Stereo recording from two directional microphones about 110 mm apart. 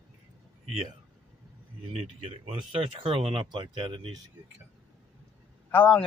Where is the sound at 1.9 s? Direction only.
70° right (ahead or behind); by 4.2 s 50° right (ahead or behind).